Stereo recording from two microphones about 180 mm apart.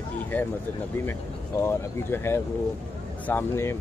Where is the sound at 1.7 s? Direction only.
15° left (ahead or behind).